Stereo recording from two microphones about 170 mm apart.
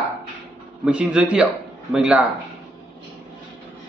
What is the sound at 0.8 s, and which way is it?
A man's voice, 5° right (ahead or behind).